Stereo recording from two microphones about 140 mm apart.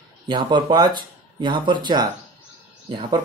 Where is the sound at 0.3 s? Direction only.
35° right (ahead or behind).